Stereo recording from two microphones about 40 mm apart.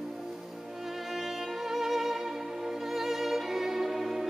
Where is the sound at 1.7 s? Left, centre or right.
Centre.